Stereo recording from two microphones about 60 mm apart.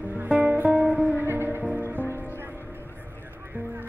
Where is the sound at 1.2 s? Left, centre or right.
Right.